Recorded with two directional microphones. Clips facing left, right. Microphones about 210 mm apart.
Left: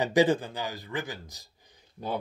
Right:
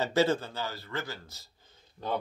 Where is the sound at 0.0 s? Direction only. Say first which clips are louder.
Left 3 dB; 15° left (ahead or behind).